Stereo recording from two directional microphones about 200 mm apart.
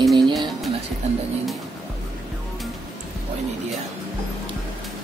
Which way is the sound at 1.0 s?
30° right (ahead or behind).